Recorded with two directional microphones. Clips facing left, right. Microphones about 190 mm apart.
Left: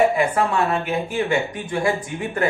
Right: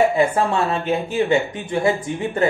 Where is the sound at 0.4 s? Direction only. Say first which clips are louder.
Even; 25° right (ahead or behind).